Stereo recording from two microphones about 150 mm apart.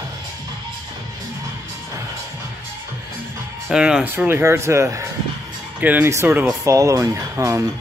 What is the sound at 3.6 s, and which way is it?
Speech, 5° right (ahead or behind).